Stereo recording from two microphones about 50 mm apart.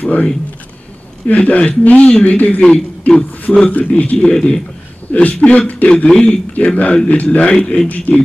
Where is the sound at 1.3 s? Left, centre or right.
Left.